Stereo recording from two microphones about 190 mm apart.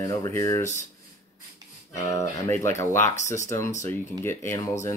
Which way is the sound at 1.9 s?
15° left (ahead or behind).